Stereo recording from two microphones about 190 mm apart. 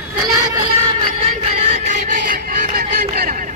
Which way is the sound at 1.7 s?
40° right (ahead or behind).